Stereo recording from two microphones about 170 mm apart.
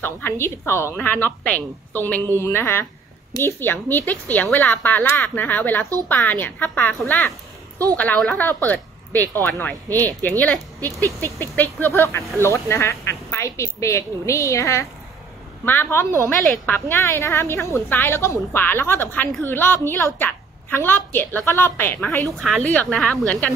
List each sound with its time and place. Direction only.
0.0 s a woman's voice: 15° left (ahead or behind)